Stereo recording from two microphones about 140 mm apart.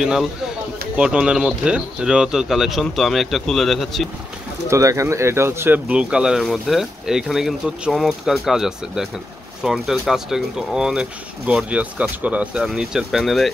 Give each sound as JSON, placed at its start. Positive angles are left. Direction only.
{"t": 0.0, "sound": "speech", "side_deg": -5}
{"t": 4.6, "sound": "speech", "side_deg": -20}